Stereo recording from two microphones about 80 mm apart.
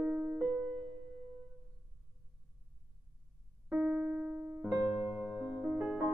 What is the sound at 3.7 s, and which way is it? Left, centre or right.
Keyboard, centre.